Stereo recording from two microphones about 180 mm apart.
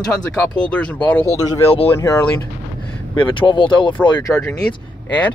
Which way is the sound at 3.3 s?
30° left (ahead or behind).